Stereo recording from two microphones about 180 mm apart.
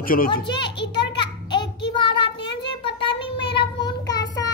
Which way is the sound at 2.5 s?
30° left (ahead or behind).